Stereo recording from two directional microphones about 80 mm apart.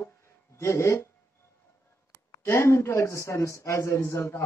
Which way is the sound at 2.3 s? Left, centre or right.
Left.